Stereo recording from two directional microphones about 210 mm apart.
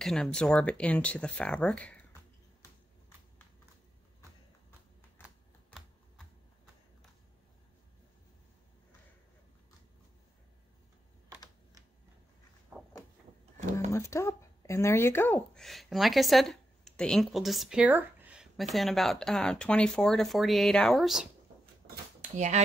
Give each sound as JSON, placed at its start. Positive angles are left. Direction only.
{"t": 0.0, "sound": "speech", "side_deg": 0}
{"t": 5.7, "sound": "typing", "side_deg": 0}
{"t": 13.7, "sound": "speech", "side_deg": 15}
{"t": 22.3, "sound": "speech", "side_deg": -35}